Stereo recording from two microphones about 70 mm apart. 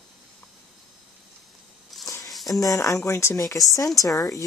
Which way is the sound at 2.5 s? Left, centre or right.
Left.